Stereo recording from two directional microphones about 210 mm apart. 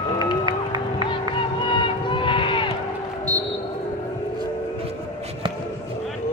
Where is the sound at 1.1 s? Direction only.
25° left (ahead or behind).